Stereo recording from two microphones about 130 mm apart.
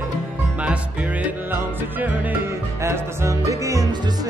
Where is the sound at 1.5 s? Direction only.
15° right (ahead or behind).